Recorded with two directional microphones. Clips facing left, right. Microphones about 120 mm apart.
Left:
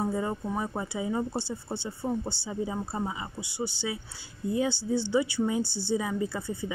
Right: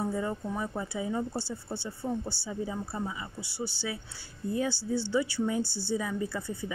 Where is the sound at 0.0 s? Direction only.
20° left (ahead or behind).